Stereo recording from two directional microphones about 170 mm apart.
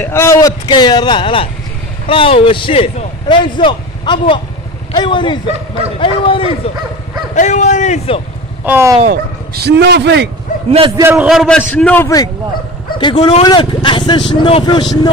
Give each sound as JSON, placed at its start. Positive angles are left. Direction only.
{"t": 0.0, "sound": "a man's voice", "side_deg": 15}
{"t": 7.3, "sound": "a man's voice", "side_deg": 45}
{"t": 8.6, "sound": "speech", "side_deg": -15}
{"t": 9.0, "sound": "speech", "side_deg": -65}
{"t": 11.0, "sound": "speech", "side_deg": -10}
{"t": 11.2, "sound": "a man's voice", "side_deg": 0}
{"t": 13.0, "sound": "speech", "side_deg": 25}